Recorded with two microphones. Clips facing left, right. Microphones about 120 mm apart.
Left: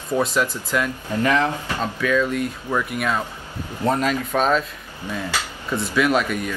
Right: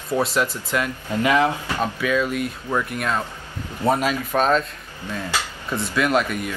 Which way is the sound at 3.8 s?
10° right (ahead or behind).